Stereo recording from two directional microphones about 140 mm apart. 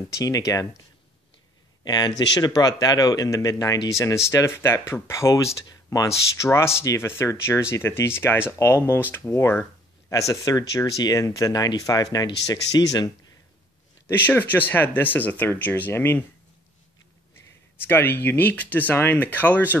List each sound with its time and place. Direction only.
0.1 s speech: 25° left (ahead or behind)
1.9 s speech: 30° left (ahead or behind)
14.0 s speech: 15° left (ahead or behind)
17.7 s speech: 15° left (ahead or behind)